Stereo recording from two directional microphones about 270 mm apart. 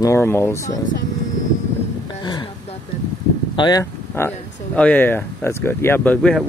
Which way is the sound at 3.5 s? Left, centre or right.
Centre.